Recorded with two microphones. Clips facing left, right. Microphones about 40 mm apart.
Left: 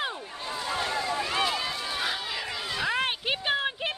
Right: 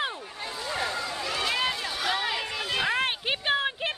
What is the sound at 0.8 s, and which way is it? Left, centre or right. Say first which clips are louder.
Run: left 2 dB; left.